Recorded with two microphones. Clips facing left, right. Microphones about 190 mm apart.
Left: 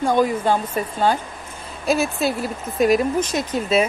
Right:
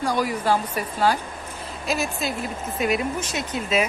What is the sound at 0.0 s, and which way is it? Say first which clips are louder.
A woman's voice: left 5 dB; 25° left (ahead or behind).